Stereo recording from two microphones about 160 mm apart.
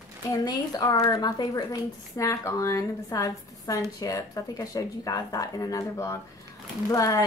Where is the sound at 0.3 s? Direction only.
25° left (ahead or behind).